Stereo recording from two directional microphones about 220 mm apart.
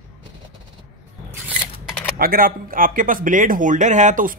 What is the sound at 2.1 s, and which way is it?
Speech, 40° right (ahead or behind).